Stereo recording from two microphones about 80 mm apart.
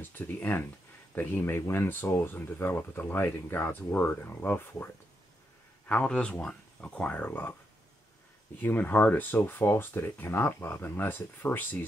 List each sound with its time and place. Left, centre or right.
0.0 s speech: left
6.0 s speech: centre
8.5 s speech: left